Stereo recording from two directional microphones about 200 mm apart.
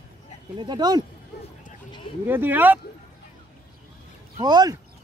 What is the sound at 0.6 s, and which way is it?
Speech, 20° right (ahead or behind).